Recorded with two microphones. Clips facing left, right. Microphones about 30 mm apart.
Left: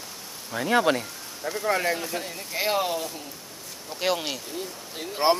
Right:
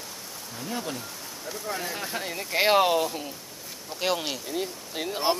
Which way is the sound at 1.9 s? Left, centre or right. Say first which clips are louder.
Even; centre.